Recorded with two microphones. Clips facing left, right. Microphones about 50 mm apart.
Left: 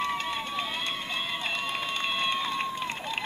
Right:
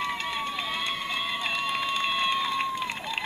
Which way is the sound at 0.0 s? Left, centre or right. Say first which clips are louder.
Even; centre.